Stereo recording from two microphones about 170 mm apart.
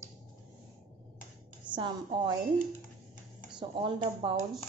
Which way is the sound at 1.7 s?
30° right (ahead or behind).